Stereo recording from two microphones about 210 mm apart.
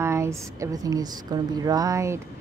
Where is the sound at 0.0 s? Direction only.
15° right (ahead or behind).